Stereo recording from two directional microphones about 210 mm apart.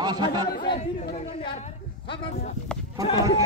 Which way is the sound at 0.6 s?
20° left (ahead or behind).